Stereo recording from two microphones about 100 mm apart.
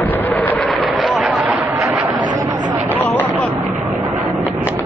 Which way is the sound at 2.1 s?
50° right (ahead or behind).